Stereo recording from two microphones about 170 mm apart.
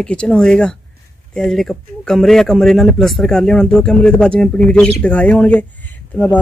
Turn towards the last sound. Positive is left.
turn(degrees=10)  # may be behind; listen again after turning